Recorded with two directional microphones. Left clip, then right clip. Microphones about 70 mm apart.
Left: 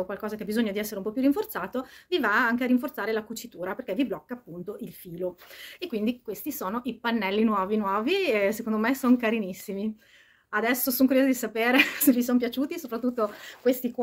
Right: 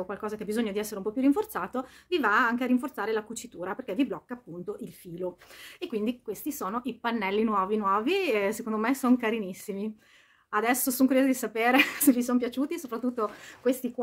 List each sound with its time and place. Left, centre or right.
0.0 s speech: right
0.5 s speech: right
5.8 s speech: right
11.1 s speech: right
12.7 s speech: right